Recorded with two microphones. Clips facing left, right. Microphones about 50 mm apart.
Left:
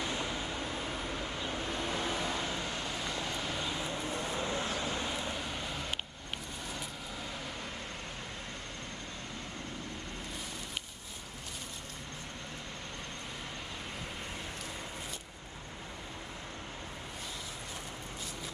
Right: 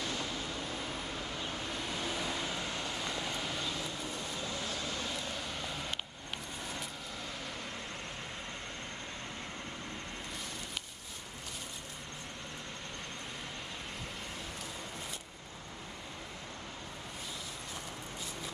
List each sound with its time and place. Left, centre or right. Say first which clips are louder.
0.0 s vehicle: left 2 dB; left; by 3.6 s centre
3.6 s vehicle: left 2 dB; left; by 5.9 s centre